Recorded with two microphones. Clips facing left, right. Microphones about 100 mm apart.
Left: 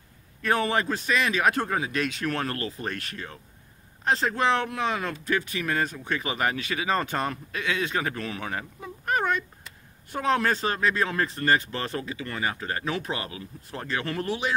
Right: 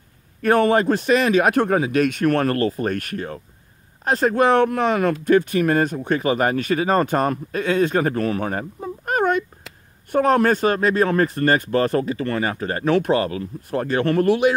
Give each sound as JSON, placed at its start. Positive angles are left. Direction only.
{"t": 0.4, "sound": "speech", "side_deg": -50}
{"t": 1.5, "sound": "speech", "side_deg": -65}
{"t": 12.8, "sound": "speech", "side_deg": -60}
{"t": 13.1, "sound": "speech", "side_deg": -45}